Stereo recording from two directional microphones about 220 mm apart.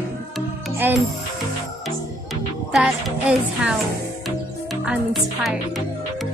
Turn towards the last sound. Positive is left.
turn(degrees=0)  # may be behind; listen again after turning